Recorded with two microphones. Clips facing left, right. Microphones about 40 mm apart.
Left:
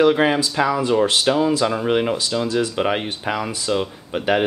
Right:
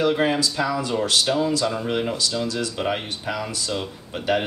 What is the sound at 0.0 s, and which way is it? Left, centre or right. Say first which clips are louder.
Speech: left 4 dB; left.